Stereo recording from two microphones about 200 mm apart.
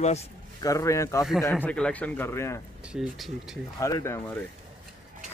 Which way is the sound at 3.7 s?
15° left (ahead or behind).